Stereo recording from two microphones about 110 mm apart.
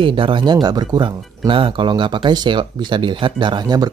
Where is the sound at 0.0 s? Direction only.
50° right (ahead or behind).